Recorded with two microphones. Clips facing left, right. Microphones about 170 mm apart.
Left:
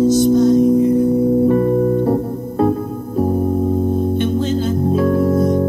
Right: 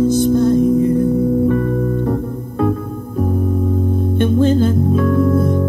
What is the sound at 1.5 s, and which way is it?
Music, 30° left (ahead or behind).